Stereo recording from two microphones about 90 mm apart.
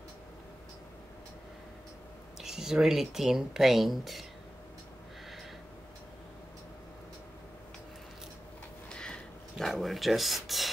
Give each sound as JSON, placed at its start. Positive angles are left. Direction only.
{"t": 2.4, "sound": "speech", "side_deg": -5}
{"t": 8.8, "sound": "dog", "side_deg": 10}
{"t": 9.7, "sound": "speech", "side_deg": 0}